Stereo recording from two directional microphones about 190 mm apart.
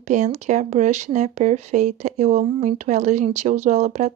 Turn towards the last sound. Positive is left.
turn(degrees=-35)  # may be behind; listen again after turning